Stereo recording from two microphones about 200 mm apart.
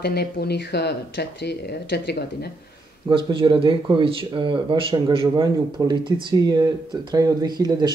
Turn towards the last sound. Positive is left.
turn(degrees=-20)  # may be behind; listen again after turning